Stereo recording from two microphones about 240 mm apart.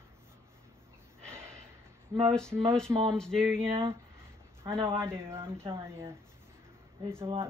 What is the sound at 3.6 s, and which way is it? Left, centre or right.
A man's voice, right.